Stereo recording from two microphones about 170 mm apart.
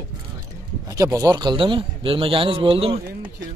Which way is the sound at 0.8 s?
20° right (ahead or behind).